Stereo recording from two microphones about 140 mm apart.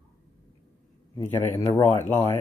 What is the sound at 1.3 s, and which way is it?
Speech, 15° left (ahead or behind).